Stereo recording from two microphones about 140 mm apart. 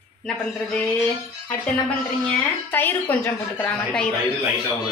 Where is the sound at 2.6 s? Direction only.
15° left (ahead or behind).